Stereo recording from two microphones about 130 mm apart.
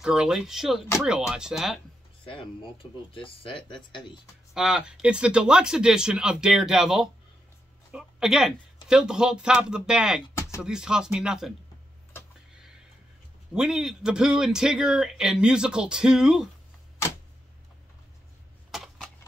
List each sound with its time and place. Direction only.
0.0 s a man's voice: 5° right (ahead or behind)
3.2 s speech: 40° left (ahead or behind)
4.6 s a man's voice: 5° right (ahead or behind)
13.5 s a man's voice: 5° right (ahead or behind)
18.7 s a sound: centre (ahead or behind)